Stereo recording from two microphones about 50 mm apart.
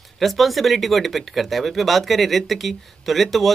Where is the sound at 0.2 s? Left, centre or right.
Centre.